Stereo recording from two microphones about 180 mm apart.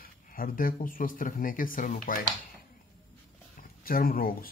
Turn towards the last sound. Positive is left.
turn(degrees=55)  # may be behind; listen again after turning